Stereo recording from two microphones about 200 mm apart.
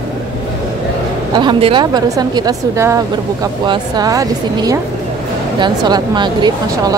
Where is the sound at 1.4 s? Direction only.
25° right (ahead or behind).